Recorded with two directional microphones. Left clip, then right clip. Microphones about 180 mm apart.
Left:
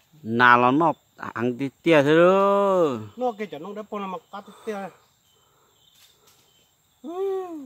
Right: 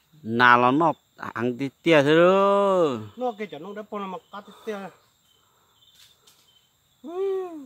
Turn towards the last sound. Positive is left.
turn(degrees=0)  # may be behind; listen again after turning